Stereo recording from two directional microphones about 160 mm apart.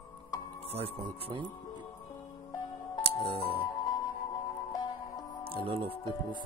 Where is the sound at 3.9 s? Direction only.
25° left (ahead or behind).